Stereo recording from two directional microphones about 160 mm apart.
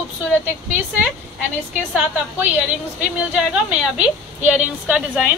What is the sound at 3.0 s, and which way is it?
A woman's voice, 5° right (ahead or behind).